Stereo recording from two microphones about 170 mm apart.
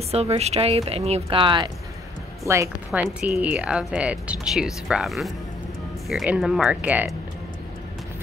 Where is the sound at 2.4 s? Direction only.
15° right (ahead or behind).